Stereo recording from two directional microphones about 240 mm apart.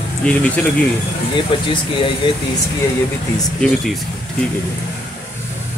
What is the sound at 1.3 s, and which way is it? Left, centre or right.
Speech, centre.